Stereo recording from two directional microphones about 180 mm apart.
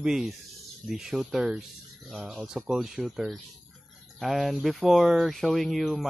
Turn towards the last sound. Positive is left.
turn(degrees=0)  # may be behind; listen again after turning